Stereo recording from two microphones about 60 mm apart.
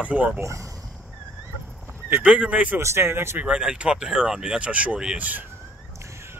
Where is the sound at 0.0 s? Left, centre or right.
Right.